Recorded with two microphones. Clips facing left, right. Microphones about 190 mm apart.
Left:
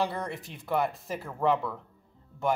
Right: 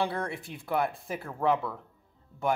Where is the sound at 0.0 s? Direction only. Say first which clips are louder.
Even; centre (ahead or behind).